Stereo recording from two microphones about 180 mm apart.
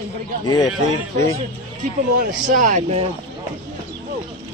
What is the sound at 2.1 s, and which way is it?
Speech, 50° right (ahead or behind).